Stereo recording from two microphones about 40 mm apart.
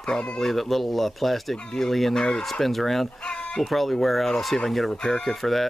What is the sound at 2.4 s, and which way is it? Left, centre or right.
Speech, centre.